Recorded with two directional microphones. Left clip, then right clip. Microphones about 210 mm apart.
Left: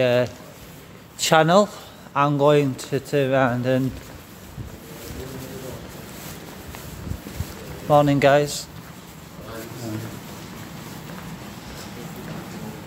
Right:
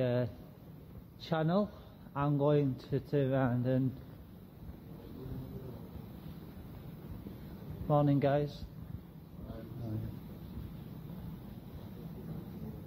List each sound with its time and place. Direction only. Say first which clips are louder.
0.0 s speech: left 14 dB; 15° left (ahead or behind)
1.2 s speech: left 18 dB; 30° left (ahead or behind)
2.1 s speech: left 14 dB; 15° left (ahead or behind)
7.9 s speech: left 14 dB; 15° left (ahead or behind)